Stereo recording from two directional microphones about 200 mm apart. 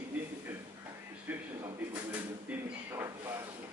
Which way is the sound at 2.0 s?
10° right (ahead or behind).